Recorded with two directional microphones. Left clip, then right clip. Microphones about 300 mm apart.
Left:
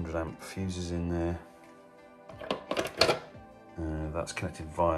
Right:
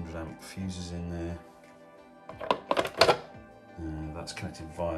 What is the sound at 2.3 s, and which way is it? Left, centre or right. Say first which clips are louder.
Music: right 5 dB; right.